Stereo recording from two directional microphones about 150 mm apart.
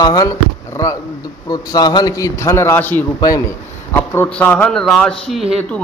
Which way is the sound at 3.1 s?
25° left (ahead or behind).